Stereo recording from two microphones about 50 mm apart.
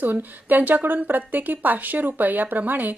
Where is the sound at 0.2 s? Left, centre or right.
Right.